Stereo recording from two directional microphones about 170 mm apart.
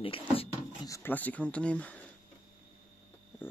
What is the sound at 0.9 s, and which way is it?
Speech, 10° left (ahead or behind).